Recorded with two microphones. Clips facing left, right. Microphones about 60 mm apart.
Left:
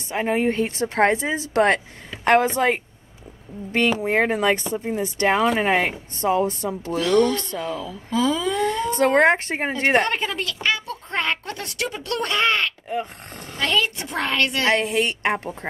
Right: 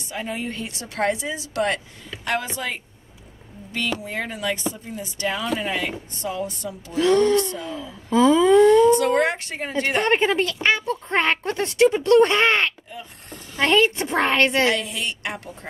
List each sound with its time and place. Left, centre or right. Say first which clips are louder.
0.1 s a woman's voice: left 8 dB; left
4.0 s a woman's voice: left 8 dB; left
7.0 s a woman's voice: right 2 dB; right
8.9 s a woman's voice: left 3 dB; left
10.0 s a woman's voice: right 6 dB; right
12.8 s speech: left 11 dB; left
13.6 s a woman's voice: right 4 dB; right
14.7 s a woman's voice: left 4 dB; left